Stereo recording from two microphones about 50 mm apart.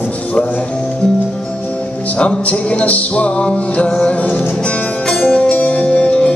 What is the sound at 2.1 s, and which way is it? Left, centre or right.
Music, left.